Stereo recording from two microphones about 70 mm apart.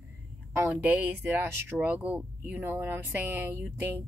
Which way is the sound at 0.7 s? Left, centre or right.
Right.